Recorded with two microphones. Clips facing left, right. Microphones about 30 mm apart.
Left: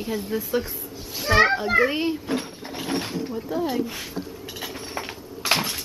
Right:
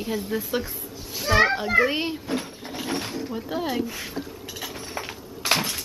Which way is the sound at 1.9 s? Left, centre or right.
Centre.